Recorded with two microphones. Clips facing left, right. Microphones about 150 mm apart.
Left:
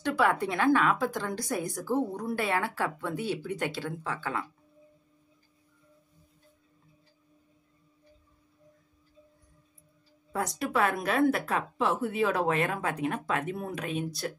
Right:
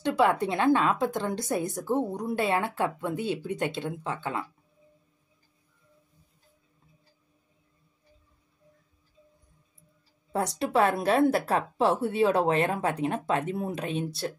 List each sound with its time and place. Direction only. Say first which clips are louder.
0.0 s a woman's voice: right 3 dB; 20° right (ahead or behind)
10.3 s a woman's voice: right 4 dB; 30° right (ahead or behind)